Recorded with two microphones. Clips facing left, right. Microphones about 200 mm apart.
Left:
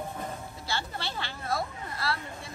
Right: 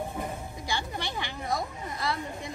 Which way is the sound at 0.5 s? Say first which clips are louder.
Right 2 dB; 15° right (ahead or behind).